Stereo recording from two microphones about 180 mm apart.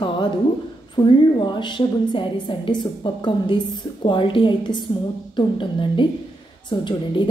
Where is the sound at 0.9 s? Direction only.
25° left (ahead or behind).